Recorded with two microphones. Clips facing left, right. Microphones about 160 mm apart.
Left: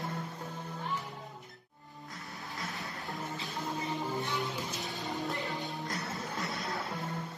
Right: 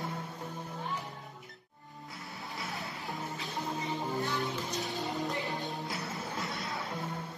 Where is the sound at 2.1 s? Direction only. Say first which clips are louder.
Right 1 dB; centre (ahead or behind).